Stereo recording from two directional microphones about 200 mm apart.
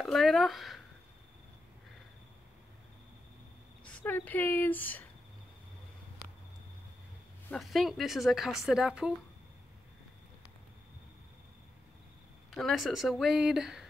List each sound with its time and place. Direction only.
0.0 s speech: centre (ahead or behind)
3.8 s a woman's voice: 10° left (ahead or behind)
7.4 s speech: centre (ahead or behind)
12.4 s speech: centre (ahead or behind)